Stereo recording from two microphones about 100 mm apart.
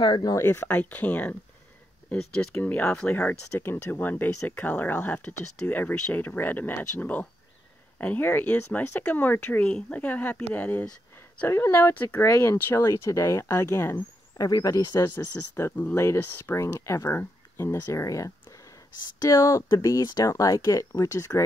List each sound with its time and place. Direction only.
0.0 s speech: 45° left (ahead or behind)
0.4 s speech: 25° left (ahead or behind)
11.4 s speech: 25° left (ahead or behind)
15.0 s speech: 25° left (ahead or behind)